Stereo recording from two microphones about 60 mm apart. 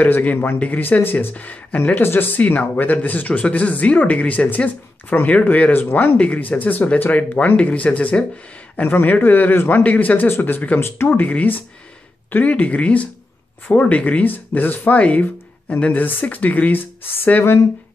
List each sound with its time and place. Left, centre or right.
0.0 s speech: left
6.1 s a man's voice: left
10.8 s a man's voice: left
11.1 s a man's voice: left